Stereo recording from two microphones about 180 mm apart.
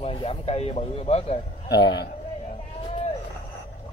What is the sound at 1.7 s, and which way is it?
Speech, 70° left (ahead or behind).